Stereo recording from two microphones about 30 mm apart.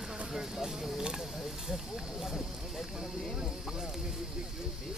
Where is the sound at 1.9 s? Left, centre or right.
Centre.